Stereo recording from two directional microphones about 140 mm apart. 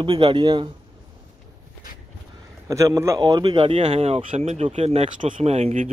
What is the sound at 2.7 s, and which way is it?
Speech, 20° right (ahead or behind).